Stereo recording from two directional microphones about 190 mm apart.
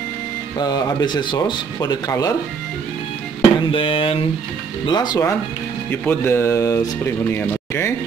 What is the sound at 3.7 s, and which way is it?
Speech, 25° left (ahead or behind).